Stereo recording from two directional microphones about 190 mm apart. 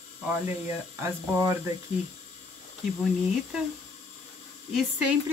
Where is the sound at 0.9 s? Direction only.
15° right (ahead or behind).